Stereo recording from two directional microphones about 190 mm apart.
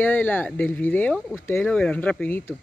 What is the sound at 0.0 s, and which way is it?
Speech, 10° left (ahead or behind).